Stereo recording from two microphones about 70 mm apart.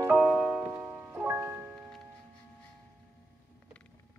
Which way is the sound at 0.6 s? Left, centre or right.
Right.